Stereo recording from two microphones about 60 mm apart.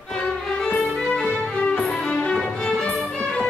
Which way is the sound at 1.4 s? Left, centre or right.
Centre.